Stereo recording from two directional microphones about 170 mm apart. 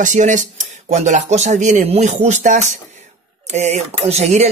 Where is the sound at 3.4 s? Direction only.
40° right (ahead or behind).